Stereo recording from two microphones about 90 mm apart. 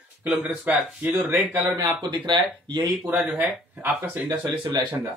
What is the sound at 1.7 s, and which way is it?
Speech, 55° right (ahead or behind).